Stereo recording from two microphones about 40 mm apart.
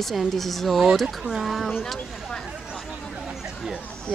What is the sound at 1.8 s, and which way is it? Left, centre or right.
Speech, centre.